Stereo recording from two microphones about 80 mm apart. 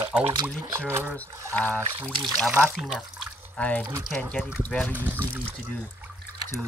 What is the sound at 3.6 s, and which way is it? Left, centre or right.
Speech, centre.